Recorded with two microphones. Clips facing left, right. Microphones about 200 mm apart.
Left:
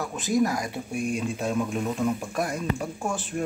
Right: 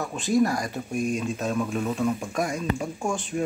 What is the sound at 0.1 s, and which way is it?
Speech, 20° left (ahead or behind).